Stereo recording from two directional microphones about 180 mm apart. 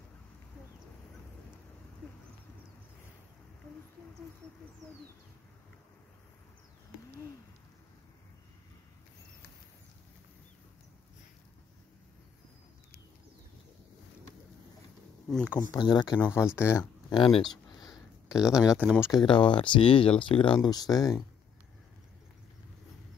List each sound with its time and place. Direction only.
15.2 s speech: 5° left (ahead or behind)
15.7 s speech: 20° left (ahead or behind)
17.1 s a sound: 30° left (ahead or behind)
18.3 s speech: 5° right (ahead or behind)
18.9 s speech: 15° left (ahead or behind)
19.2 s speech: 25° left (ahead or behind)